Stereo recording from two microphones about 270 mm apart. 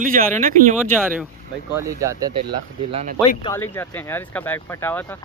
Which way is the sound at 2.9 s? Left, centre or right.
Right.